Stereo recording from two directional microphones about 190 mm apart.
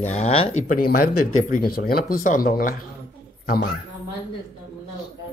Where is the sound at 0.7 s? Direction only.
45° left (ahead or behind).